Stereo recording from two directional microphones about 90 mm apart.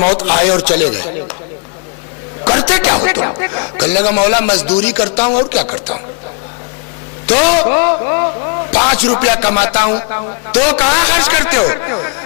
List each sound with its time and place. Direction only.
0.1 s a man's voice: 15° left (ahead or behind)
2.4 s a man's voice: 15° left (ahead or behind)
7.2 s a man's voice: 20° left (ahead or behind)
8.4 s a sound: 25° left (ahead or behind)
8.6 s a man's voice: 15° left (ahead or behind)